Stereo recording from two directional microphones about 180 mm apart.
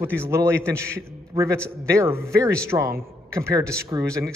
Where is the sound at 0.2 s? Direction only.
15° right (ahead or behind).